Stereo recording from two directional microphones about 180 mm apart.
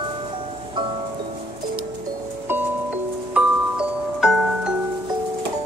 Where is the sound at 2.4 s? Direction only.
10° right (ahead or behind).